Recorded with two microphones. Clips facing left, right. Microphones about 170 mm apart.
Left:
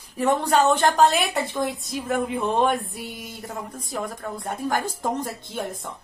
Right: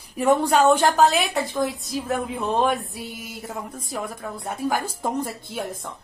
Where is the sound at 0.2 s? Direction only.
10° right (ahead or behind).